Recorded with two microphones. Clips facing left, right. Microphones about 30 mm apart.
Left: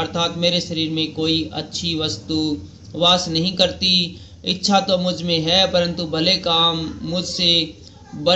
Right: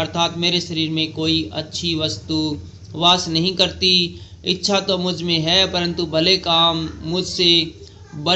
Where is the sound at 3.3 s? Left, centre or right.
Centre.